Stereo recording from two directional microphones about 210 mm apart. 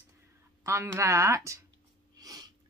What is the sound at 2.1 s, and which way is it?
Sneeze, 20° right (ahead or behind).